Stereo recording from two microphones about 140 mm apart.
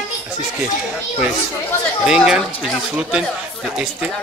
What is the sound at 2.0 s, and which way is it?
A man's voice, 5° right (ahead or behind).